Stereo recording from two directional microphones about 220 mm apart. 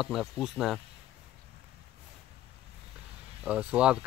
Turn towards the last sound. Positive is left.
turn(degrees=-5)  # may be behind; listen again after turning